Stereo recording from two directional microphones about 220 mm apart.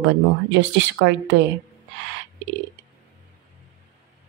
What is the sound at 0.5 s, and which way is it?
Speech, 55° right (ahead or behind).